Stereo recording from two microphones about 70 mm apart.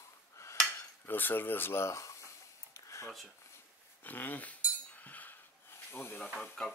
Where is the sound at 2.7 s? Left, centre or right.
Left.